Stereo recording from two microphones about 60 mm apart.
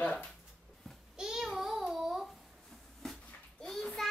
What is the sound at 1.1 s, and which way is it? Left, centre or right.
Babbling, centre.